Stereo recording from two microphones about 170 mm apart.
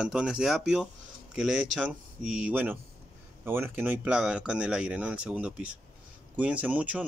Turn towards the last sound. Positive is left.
turn(degrees=-10)  # may be behind; listen again after turning